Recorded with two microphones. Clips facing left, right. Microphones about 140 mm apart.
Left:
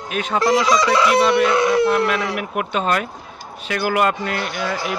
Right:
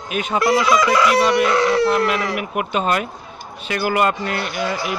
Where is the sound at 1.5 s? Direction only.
15° left (ahead or behind).